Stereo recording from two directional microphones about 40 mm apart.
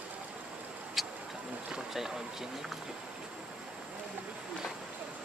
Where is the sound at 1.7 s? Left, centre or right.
Centre.